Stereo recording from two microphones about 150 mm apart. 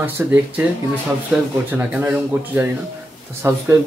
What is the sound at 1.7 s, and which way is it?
Speech, 10° right (ahead or behind).